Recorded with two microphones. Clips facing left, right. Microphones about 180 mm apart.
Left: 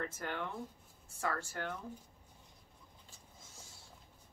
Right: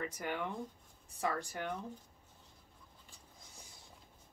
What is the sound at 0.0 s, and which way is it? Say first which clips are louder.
Speech: right 1 dB; 10° right (ahead or behind).